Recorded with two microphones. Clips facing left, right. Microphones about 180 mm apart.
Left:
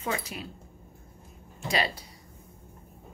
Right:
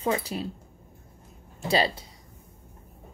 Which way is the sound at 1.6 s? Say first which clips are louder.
Right 5 dB; 30° right (ahead or behind).